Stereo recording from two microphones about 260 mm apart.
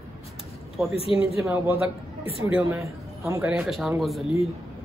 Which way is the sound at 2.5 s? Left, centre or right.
Centre.